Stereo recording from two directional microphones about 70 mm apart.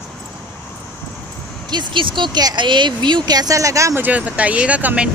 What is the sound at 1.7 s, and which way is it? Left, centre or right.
Speech, right.